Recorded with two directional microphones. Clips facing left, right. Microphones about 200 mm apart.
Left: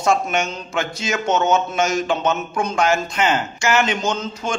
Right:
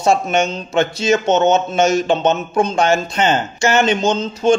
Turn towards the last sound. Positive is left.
turn(degrees=-25)  # may be behind; listen again after turning